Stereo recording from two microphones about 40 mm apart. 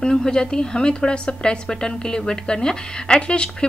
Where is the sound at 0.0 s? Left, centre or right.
Centre.